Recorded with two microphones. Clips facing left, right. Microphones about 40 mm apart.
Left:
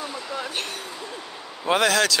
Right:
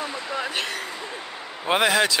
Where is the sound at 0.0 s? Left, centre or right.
Right.